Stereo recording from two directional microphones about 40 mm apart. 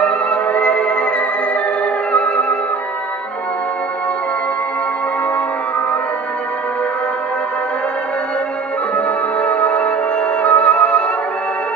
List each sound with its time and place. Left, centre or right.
0.0 s music: left
2.1 s music: left
8.9 s music: left